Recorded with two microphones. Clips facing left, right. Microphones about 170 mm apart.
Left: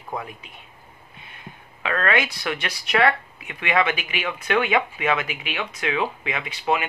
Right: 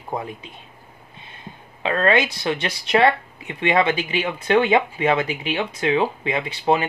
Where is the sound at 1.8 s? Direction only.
25° right (ahead or behind).